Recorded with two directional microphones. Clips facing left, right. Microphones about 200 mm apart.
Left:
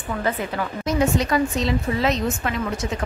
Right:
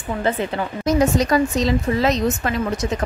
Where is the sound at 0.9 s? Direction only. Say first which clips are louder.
Right 4 dB; 40° right (ahead or behind).